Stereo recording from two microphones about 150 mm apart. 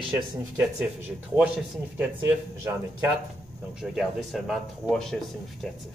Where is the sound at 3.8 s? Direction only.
Centre (ahead or behind).